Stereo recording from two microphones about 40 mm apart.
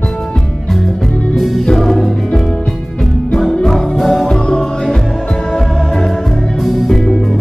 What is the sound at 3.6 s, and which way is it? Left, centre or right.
Music, centre.